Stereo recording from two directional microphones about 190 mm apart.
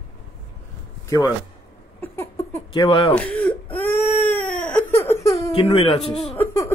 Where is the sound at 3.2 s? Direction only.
5° left (ahead or behind).